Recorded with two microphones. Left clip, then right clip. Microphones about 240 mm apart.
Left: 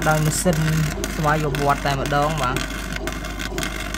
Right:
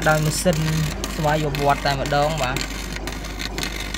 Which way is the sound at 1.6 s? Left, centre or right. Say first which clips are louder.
Right 1 dB; centre.